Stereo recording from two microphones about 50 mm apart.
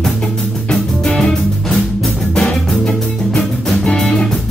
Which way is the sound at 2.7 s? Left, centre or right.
Left.